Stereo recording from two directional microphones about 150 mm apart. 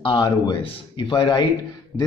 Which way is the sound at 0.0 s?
30° left (ahead or behind).